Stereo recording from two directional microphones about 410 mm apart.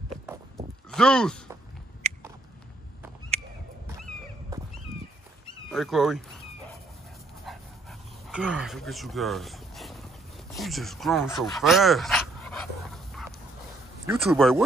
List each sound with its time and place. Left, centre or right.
0.3 s walk: centre
2.0 s a sound: centre
5.7 s speech: centre
8.3 s speech: centre
11.4 s dog: centre
14.0 s speech: centre